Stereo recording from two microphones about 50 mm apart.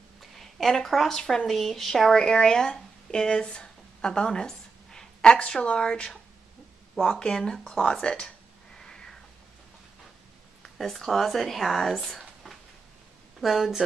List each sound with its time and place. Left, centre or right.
0.2 s a woman's voice: centre
2.1 s a woman's voice: centre
8.7 s cat: centre
10.8 s speech: centre
12.4 s dishes: centre
13.4 s speech: centre